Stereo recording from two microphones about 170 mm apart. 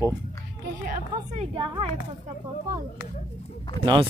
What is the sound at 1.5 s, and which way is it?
Speech, 30° right (ahead or behind).